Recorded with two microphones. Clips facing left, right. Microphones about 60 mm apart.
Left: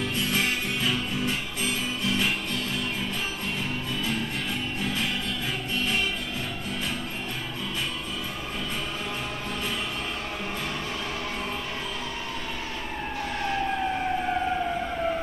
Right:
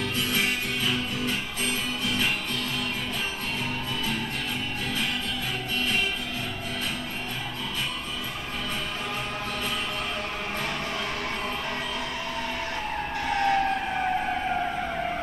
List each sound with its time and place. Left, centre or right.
13.3 s vehicle: right